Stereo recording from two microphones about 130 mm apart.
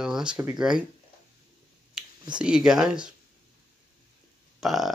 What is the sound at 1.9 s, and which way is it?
Speech, 5° right (ahead or behind).